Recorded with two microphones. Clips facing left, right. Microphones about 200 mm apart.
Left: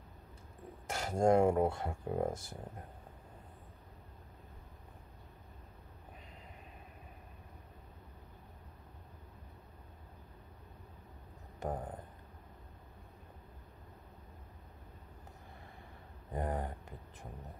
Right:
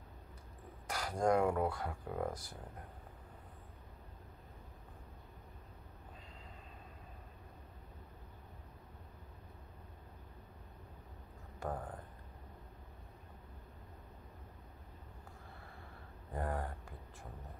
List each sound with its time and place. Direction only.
0.8 s speech: 25° left (ahead or behind)
11.6 s speech: 20° left (ahead or behind)
16.3 s a sound: 20° left (ahead or behind)